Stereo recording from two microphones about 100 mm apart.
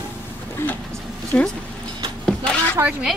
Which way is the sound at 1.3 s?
20° left (ahead or behind).